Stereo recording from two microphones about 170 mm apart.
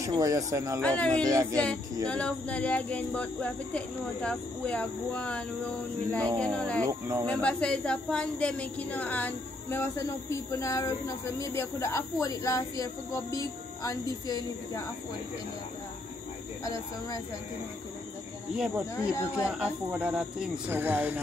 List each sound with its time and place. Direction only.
0.0 s speech: 20° right (ahead or behind)
0.7 s speech: 5° left (ahead or behind)
1.2 s speech: 20° right (ahead or behind)
2.0 s speech: 5° left (ahead or behind)
6.4 s speech: 5° left (ahead or behind)
6.8 s speech: 15° right (ahead or behind)
7.2 s speech: 5° left (ahead or behind); by 14.8 s 20° left (ahead or behind)
16.6 s speech: 20° left (ahead or behind)
18.5 s speech: 5° right (ahead or behind)
19.1 s speech: 15° left (ahead or behind)
19.6 s speech: 10° right (ahead or behind)